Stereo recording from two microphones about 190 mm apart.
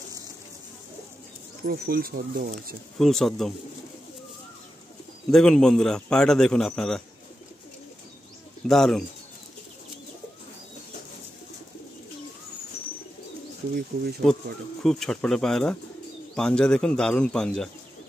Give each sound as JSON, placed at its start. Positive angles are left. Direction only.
{"t": 1.7, "sound": "speech", "side_deg": -50}
{"t": 3.0, "sound": "a man's voice", "side_deg": 0}
{"t": 5.3, "sound": "a man's voice", "side_deg": 5}
{"t": 8.6, "sound": "a man's voice", "side_deg": 0}
{"t": 13.9, "sound": "speech", "side_deg": -55}
{"t": 14.8, "sound": "a man's voice", "side_deg": 0}